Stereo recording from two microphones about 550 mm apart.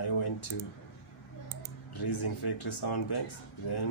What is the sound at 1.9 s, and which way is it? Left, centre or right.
A man's voice, left.